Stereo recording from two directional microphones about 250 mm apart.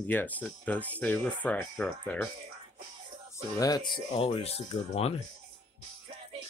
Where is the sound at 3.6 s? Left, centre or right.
Centre.